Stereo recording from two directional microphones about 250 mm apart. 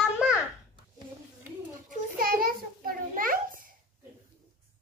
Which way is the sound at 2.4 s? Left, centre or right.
Right.